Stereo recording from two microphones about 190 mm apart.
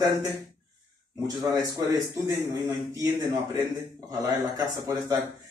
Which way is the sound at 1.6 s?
20° right (ahead or behind).